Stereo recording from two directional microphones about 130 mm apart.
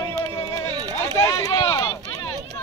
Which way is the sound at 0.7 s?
30° right (ahead or behind).